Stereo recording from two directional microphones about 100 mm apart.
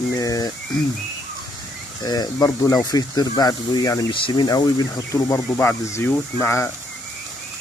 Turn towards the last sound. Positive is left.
turn(degrees=25)  # may be behind; listen again after turning